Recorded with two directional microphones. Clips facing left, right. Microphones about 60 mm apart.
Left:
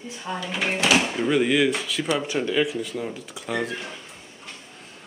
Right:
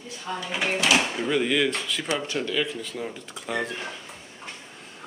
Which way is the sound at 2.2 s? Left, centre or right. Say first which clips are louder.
Left 4 dB; centre.